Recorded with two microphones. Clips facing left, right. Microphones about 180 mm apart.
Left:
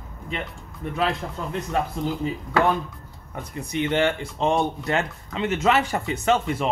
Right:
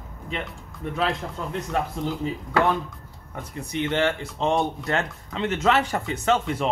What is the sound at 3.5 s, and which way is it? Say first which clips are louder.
Speech: left 2 dB; 15° left (ahead or behind).